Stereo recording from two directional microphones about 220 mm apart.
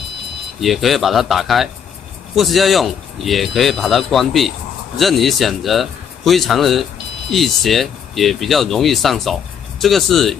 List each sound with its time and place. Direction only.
0.6 s speech: centre (ahead or behind)